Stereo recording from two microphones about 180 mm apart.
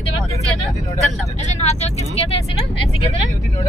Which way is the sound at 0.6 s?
15° left (ahead or behind).